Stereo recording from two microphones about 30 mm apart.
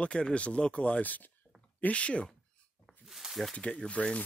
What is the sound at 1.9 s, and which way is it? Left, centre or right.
Speech, left.